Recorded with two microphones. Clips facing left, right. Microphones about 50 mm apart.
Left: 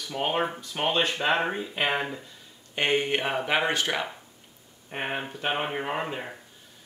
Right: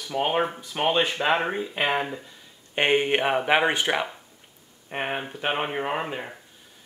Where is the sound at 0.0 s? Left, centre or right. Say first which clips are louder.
Right 3 dB; centre.